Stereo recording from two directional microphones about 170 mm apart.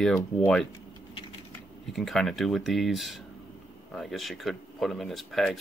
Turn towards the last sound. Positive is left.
turn(degrees=0)  # may be behind; listen again after turning